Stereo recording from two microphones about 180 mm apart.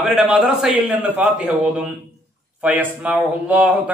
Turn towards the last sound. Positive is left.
turn(degrees=-10)  # may be behind; listen again after turning